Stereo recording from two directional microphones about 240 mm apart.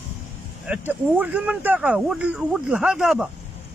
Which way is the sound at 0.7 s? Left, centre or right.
Centre.